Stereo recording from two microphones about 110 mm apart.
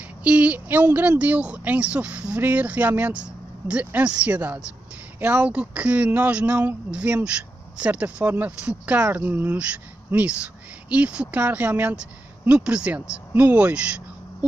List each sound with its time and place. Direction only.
0.2 s speech: 10° right (ahead or behind)